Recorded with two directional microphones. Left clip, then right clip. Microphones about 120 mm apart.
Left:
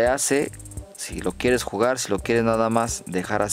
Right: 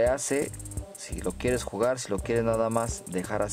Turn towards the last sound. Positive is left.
turn(degrees=50)  # may be behind; listen again after turning